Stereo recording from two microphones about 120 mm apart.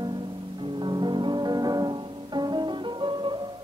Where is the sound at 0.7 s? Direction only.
40° right (ahead or behind).